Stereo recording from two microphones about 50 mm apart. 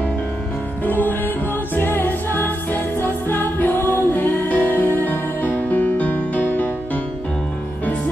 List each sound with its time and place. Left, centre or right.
0.8 s music: left